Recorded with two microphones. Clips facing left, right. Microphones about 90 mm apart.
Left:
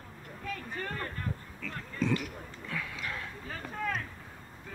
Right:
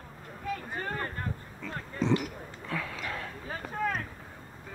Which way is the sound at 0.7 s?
25° right (ahead or behind).